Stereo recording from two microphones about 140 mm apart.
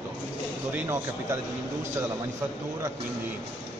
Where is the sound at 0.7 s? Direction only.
20° right (ahead or behind).